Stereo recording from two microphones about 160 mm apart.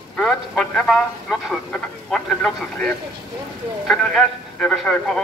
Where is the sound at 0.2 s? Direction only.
5° left (ahead or behind).